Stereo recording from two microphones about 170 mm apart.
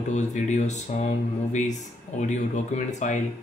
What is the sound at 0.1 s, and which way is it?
Speech, 45° left (ahead or behind).